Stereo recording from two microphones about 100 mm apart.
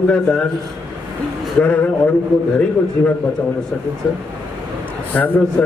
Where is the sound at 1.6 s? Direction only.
15° left (ahead or behind).